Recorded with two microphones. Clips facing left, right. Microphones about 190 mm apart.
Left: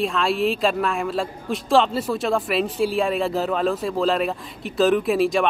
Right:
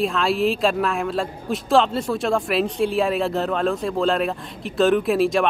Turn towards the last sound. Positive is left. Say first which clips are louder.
# right 1 dB
turn(degrees=0)  # may be behind; listen again after turning